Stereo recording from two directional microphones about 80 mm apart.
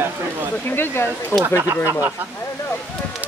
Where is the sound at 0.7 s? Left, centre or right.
Left.